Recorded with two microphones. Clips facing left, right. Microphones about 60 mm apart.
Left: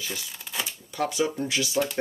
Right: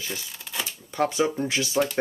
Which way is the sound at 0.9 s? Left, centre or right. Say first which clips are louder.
Right 3 dB; right.